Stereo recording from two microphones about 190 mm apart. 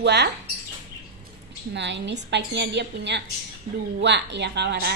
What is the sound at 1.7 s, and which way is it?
Speech, 65° right (ahead or behind).